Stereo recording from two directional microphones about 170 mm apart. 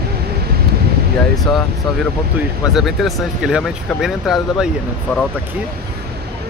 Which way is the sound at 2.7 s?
Centre (ahead or behind).